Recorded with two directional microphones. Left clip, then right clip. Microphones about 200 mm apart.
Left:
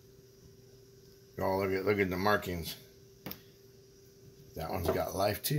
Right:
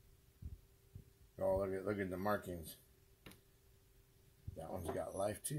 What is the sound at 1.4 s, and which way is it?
Speech, 25° right (ahead or behind).